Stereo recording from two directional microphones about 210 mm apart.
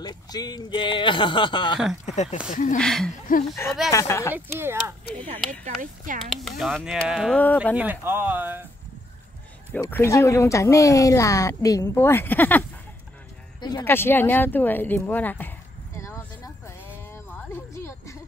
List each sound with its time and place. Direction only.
0.0 s speech: 20° left (ahead or behind)
2.5 s speech: 40° left (ahead or behind)
2.8 s speech: centre (ahead or behind)
3.3 s speech: 40° left (ahead or behind)
3.9 s speech: 15° left (ahead or behind)
4.3 s speech: 10° right (ahead or behind)
5.8 s speech: 40° right (ahead or behind)
6.6 s speech: centre (ahead or behind)
7.7 s speech: 10° right (ahead or behind)
9.7 s speech: 10° left (ahead or behind)
13.6 s speech: 20° left (ahead or behind)
17.7 s a sound: 15° left (ahead or behind)